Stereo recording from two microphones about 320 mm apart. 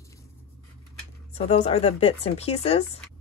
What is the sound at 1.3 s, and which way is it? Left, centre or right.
Speech, centre.